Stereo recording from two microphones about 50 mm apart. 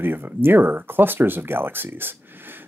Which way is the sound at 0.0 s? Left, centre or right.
Right.